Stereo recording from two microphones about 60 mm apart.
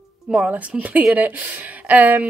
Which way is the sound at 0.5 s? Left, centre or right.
Right.